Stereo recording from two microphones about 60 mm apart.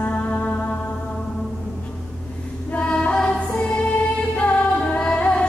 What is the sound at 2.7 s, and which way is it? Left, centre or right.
Female singing, centre.